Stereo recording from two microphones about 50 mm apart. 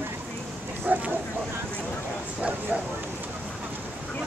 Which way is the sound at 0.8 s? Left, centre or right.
Right.